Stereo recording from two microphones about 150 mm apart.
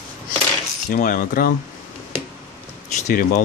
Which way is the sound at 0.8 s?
65° left (ahead or behind).